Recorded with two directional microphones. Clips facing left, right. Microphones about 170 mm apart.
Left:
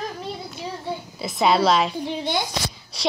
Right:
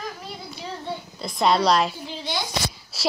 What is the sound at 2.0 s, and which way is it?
Speech, 55° left (ahead or behind).